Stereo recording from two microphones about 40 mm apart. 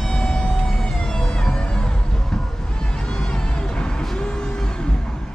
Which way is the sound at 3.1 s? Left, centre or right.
Centre.